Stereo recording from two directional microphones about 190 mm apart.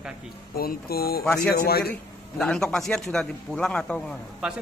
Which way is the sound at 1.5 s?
55° left (ahead or behind).